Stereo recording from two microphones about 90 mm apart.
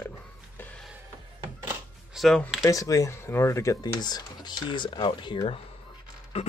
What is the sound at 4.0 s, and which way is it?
Speech, 50° left (ahead or behind).